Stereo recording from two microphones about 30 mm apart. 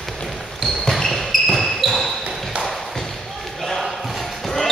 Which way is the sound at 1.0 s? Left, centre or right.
Centre.